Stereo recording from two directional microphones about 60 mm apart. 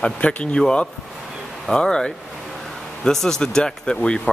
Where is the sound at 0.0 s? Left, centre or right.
Left.